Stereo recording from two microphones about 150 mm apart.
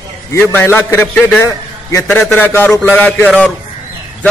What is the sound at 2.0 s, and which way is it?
A man's voice, 5° left (ahead or behind).